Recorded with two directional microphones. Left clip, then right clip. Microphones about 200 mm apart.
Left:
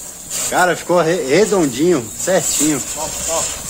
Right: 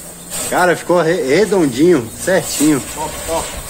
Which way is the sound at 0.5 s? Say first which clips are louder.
Right 1 dB; 25° left (ahead or behind).